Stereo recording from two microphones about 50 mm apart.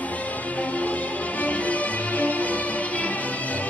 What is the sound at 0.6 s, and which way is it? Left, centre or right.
Music, left.